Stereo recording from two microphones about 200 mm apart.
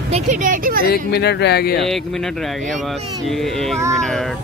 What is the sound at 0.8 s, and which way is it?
Speech, 50° left (ahead or behind).